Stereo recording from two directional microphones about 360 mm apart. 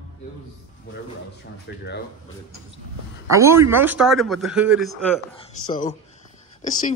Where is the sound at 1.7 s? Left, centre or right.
Left.